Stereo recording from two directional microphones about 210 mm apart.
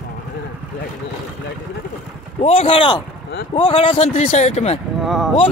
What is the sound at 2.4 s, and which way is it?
A man's voice, 25° left (ahead or behind).